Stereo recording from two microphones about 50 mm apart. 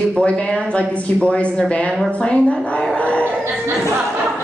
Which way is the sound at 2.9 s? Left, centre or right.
Left.